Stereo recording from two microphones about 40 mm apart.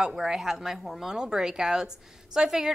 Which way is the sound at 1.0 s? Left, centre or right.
Centre.